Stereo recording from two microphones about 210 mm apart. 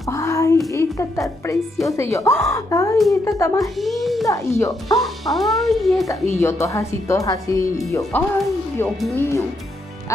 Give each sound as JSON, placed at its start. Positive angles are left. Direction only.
{"t": 0.1, "sound": "a sound", "side_deg": 15}
{"t": 0.7, "sound": "a woman's voice", "side_deg": 15}
{"t": 3.8, "sound": "a child's voice", "side_deg": 0}
{"t": 4.3, "sound": "speech", "side_deg": 15}
{"t": 4.8, "sound": "speech", "side_deg": 0}
{"t": 6.3, "sound": "speech", "side_deg": 15}